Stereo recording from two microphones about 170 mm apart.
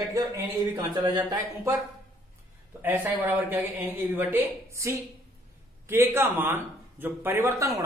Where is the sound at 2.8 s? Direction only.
10° right (ahead or behind).